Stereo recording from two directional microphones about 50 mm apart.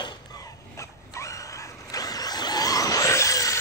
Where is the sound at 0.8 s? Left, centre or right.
Left.